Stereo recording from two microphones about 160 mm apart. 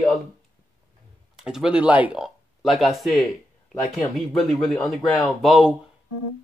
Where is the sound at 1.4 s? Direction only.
5° right (ahead or behind).